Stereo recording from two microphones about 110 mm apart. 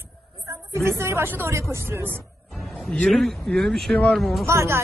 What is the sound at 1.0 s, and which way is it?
A woman's voice, 25° right (ahead or behind).